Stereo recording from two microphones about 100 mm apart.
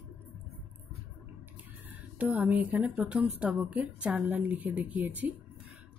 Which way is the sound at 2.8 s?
5° right (ahead or behind).